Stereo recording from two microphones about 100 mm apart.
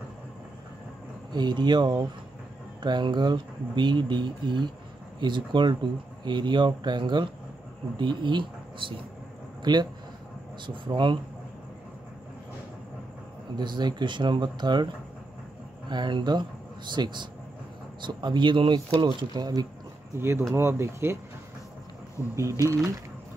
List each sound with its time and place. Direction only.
1.3 s speech: 45° right (ahead or behind)
13.6 s speech: 45° right (ahead or behind)
15.9 s speech: 50° right (ahead or behind)
20.2 s speech: 25° right (ahead or behind)
22.3 s speech: 30° right (ahead or behind)